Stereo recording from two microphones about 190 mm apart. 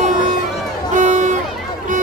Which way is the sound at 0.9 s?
40° right (ahead or behind).